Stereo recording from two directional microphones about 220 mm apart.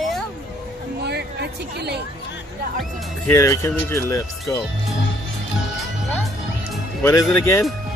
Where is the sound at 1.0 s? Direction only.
50° right (ahead or behind).